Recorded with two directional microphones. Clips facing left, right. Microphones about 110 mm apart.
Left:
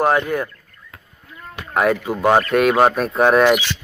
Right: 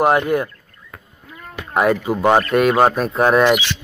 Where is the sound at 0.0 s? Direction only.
15° right (ahead or behind).